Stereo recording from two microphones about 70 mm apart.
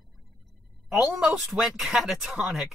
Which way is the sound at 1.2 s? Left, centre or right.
Centre.